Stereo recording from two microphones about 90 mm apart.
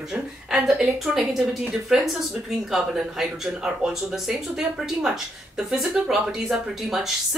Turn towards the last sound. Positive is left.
turn(degrees=-5)  # may be behind; listen again after turning